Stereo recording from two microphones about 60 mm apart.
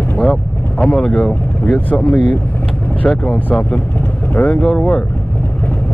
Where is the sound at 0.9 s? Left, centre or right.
Left.